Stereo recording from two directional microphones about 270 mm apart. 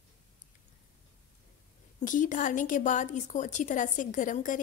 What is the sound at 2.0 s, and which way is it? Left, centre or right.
A woman's voice, left.